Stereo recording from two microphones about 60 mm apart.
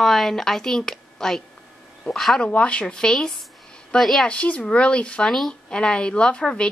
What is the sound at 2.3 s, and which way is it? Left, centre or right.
Speech, left.